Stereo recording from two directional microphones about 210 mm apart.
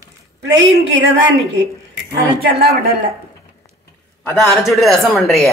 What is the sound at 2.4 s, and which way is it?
Speech, 50° right (ahead or behind).